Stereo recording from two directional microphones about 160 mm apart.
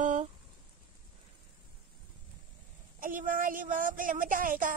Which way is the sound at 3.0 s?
55° right (ahead or behind).